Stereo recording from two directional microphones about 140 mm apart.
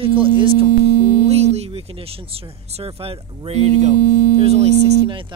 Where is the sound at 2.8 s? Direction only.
45° right (ahead or behind).